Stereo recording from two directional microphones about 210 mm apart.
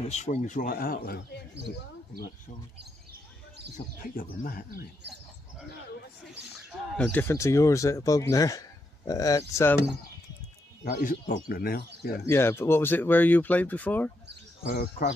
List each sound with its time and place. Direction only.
0.1 s speech: 30° left (ahead or behind)
2.8 s bird: 50° right (ahead or behind)
4.2 s speech: 40° left (ahead or behind)
7.0 s speech: 10° left (ahead or behind)
10.8 s speech: 45° left (ahead or behind)
12.3 s speech: 10° left (ahead or behind)
14.8 s speech: 45° left (ahead or behind)